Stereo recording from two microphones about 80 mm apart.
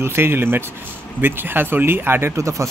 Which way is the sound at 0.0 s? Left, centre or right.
Right.